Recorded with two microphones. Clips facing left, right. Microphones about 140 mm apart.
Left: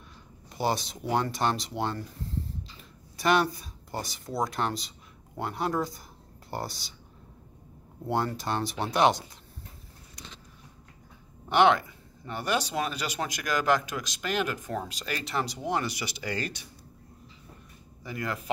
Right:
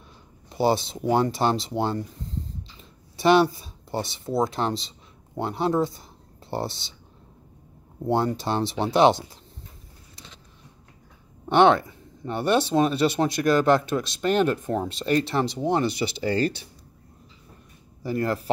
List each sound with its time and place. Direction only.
0.6 s speech: 30° right (ahead or behind)
2.0 s a sound: 20° right (ahead or behind)
3.2 s speech: 30° right (ahead or behind)
8.3 s speech: 30° right (ahead or behind)
11.4 s speech: 25° right (ahead or behind)
18.0 s speech: 35° right (ahead or behind)